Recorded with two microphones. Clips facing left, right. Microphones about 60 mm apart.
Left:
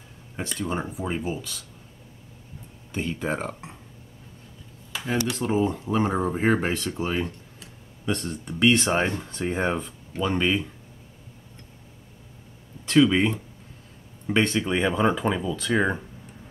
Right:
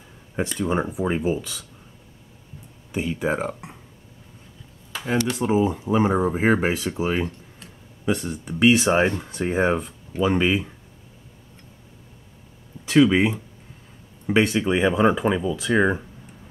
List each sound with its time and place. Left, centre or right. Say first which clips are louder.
0.4 s speech: right 6 dB; centre
2.9 s speech: right 4 dB; centre
5.3 s speech: right 4 dB; centre
12.8 s speech: right 2 dB; centre